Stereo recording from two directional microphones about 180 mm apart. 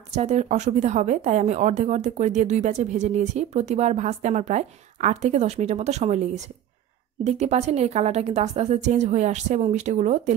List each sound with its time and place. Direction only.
0.1 s a woman's voice: 40° right (ahead or behind)